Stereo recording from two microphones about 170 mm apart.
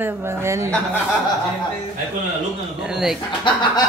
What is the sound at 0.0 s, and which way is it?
Speech, 15° right (ahead or behind).